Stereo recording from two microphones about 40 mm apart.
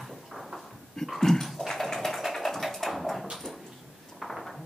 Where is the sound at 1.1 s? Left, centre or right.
Centre.